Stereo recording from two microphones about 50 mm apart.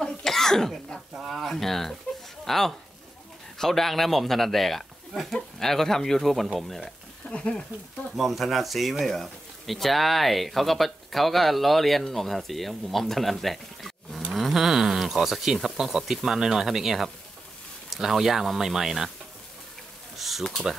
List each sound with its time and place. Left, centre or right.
0.2 s cough: centre
1.1 s speech: centre
8.2 s speech: centre
14.3 s insect: centre
15.8 s speech: centre
20.2 s a sound: centre